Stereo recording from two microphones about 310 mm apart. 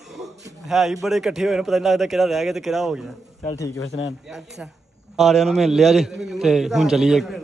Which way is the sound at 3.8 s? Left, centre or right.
Left.